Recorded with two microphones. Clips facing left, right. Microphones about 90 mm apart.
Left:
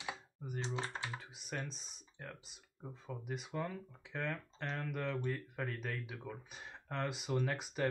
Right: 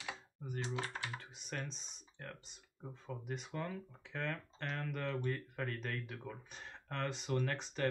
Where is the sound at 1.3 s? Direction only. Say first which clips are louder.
Left 1 dB; 5° left (ahead or behind).